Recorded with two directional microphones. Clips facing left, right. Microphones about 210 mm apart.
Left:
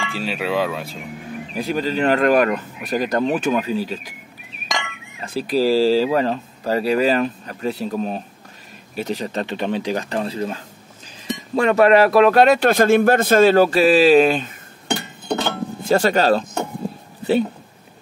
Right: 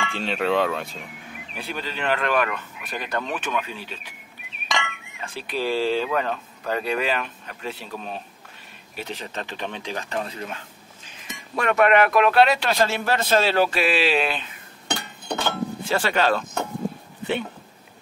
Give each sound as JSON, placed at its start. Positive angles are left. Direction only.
{"t": 0.1, "sound": "speech", "side_deg": 5}
{"t": 1.5, "sound": "speech", "side_deg": 40}
{"t": 5.2, "sound": "speech", "side_deg": 35}
{"t": 15.2, "sound": "chink", "side_deg": 25}
{"t": 15.9, "sound": "speech", "side_deg": 40}